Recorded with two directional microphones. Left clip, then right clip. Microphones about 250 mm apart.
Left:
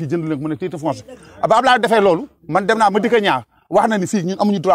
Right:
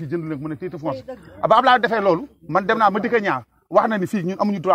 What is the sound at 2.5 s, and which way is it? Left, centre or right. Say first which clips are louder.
Speech: left 3 dB; left.